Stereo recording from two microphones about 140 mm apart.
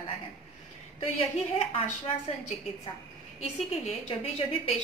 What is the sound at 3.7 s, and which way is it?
A woman's voice, 45° left (ahead or behind).